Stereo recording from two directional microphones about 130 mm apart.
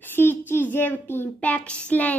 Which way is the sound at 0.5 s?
15° left (ahead or behind).